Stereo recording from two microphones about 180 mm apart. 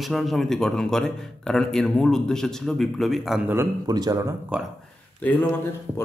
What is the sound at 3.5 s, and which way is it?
Speech, 15° right (ahead or behind).